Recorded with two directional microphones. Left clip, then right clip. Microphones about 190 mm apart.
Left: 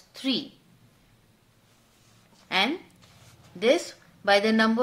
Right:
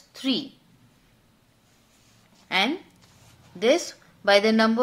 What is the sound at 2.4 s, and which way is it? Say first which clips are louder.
A woman's voice: right 1 dB; 10° right (ahead or behind).